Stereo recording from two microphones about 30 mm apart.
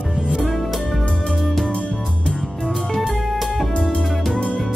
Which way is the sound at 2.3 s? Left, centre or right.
Centre.